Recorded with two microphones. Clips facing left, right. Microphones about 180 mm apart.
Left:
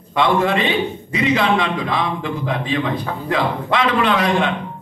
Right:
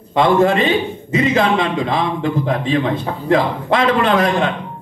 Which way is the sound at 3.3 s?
45° right (ahead or behind).